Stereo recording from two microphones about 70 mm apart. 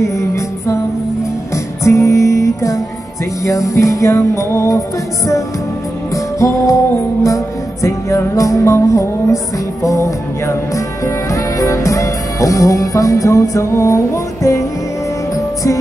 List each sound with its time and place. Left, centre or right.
0.0 s music: left
1.9 s music: left
6.4 s music: left